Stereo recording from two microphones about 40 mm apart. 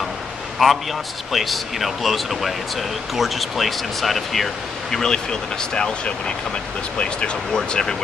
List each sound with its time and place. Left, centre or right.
0.6 s speech: centre
4.9 s speech: centre
7.5 s speech: centre